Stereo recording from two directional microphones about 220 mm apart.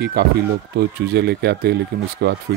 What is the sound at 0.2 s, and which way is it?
Speech, 50° right (ahead or behind).